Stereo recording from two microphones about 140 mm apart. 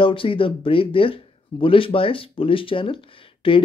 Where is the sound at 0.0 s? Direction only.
40° left (ahead or behind).